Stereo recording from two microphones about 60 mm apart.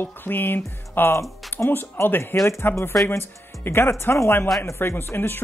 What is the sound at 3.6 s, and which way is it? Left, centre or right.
Speech, left.